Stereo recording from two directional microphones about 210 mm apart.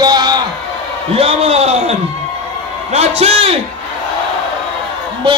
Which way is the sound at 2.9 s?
30° right (ahead or behind).